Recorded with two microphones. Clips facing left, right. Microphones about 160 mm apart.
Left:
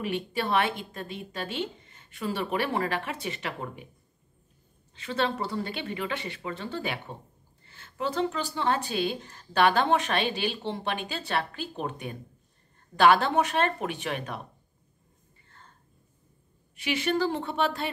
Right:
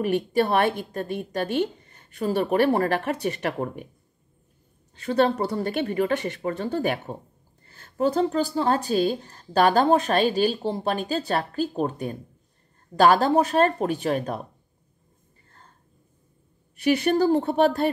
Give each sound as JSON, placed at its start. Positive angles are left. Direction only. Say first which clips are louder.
{"t": 0.0, "sound": "a woman's voice", "louder": "right 8 dB", "side_deg": -45}
{"t": 4.9, "sound": "a woman's voice", "louder": "right 8 dB", "side_deg": -45}
{"t": 16.8, "sound": "a woman's voice", "louder": "right 7 dB", "side_deg": -40}